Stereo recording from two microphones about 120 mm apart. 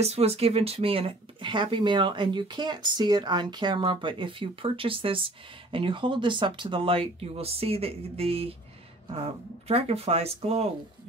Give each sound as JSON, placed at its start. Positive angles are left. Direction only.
{"t": 0.0, "sound": "speech", "side_deg": -60}
{"t": 9.7, "sound": "speech", "side_deg": -55}